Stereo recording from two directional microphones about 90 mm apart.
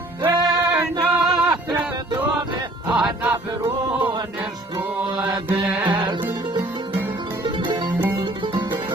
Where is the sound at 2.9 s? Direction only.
15° right (ahead or behind).